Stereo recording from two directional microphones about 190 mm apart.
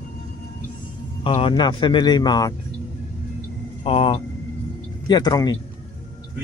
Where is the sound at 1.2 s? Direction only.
25° left (ahead or behind).